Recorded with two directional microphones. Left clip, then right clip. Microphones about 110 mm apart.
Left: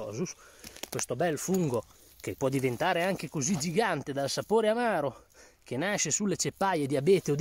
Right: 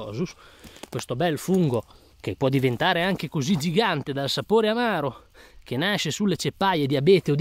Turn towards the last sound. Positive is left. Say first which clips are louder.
# right 6 dB
turn(degrees=-15)  # may be behind; listen again after turning